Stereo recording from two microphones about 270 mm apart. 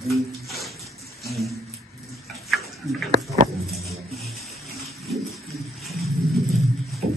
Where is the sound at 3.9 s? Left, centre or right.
Centre.